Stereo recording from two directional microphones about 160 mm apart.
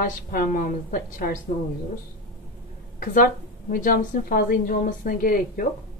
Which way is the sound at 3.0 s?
60° left (ahead or behind).